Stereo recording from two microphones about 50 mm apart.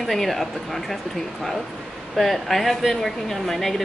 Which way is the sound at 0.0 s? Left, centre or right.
Centre.